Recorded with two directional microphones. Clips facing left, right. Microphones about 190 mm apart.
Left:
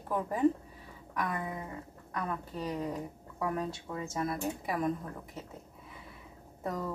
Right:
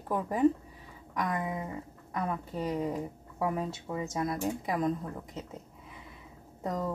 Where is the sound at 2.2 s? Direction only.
25° right (ahead or behind).